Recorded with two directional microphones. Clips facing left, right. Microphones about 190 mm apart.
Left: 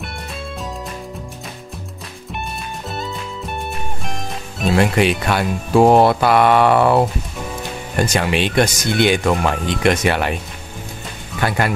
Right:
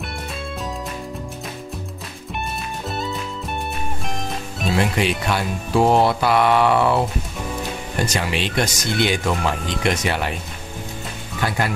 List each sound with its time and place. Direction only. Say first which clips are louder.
2.9 s music: right 1 dB; centre (ahead or behind)
4.7 s speech: left 5 dB; 60° left (ahead or behind)
8.1 s speech: left 5 dB; 60° left (ahead or behind)
11.4 s speech: left 4 dB; 60° left (ahead or behind)